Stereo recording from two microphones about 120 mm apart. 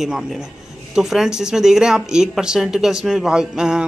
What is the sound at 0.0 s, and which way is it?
Speech, 5° right (ahead or behind).